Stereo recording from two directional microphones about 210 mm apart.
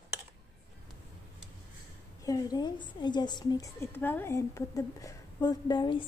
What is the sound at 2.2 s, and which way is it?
A woman's voice, 15° left (ahead or behind).